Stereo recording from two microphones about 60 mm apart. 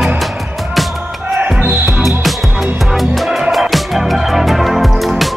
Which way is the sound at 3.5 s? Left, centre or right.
Centre.